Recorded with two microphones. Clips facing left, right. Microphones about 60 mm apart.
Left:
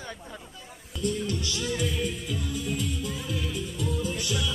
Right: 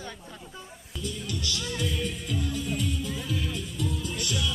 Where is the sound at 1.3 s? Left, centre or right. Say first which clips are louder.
Left 2 dB; left.